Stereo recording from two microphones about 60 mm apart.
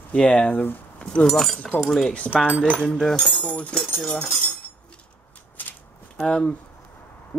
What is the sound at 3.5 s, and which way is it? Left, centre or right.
Speech, left.